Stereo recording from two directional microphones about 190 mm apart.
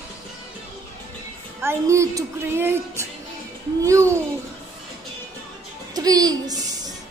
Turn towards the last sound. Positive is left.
turn(degrees=-20)  # may be behind; listen again after turning